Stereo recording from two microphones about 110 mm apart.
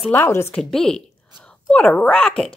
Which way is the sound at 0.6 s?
5° left (ahead or behind).